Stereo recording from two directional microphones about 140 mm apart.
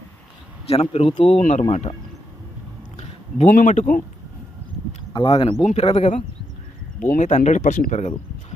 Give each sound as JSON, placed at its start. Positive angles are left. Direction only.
{"t": 0.7, "sound": "speech", "side_deg": 45}
{"t": 3.0, "sound": "a sound", "side_deg": 50}
{"t": 3.5, "sound": "speech", "side_deg": 70}
{"t": 5.1, "sound": "speech", "side_deg": 35}
{"t": 5.7, "sound": "speech", "side_deg": 50}
{"t": 7.0, "sound": "speech", "side_deg": 65}